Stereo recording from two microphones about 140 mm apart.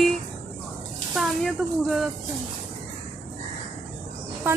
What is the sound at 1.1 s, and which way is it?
Speech, centre (ahead or behind).